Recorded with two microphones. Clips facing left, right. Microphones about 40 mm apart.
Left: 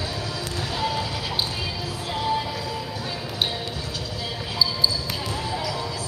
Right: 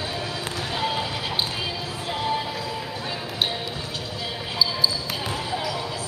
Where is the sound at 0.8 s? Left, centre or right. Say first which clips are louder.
Even; right.